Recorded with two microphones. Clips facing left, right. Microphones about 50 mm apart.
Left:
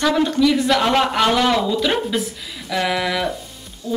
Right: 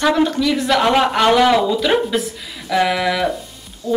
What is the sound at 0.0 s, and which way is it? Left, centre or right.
A woman's voice, centre.